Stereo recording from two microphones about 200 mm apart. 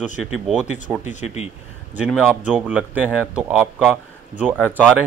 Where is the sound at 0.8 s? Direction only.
10° right (ahead or behind).